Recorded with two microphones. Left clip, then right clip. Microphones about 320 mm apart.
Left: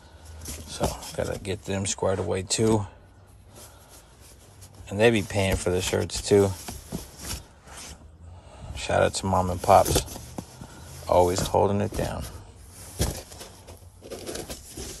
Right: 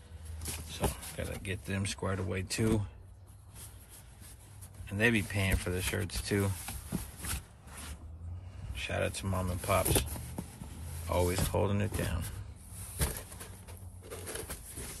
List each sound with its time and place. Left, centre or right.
0.7 s speech: centre
4.8 s speech: centre
8.7 s speech: centre
11.1 s speech: centre